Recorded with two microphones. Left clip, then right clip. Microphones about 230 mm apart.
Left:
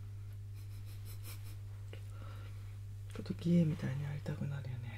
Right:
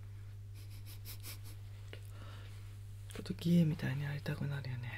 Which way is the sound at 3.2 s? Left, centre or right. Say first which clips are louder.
Even; centre.